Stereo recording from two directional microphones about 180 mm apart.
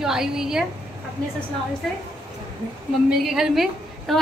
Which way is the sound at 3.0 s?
Centre (ahead or behind).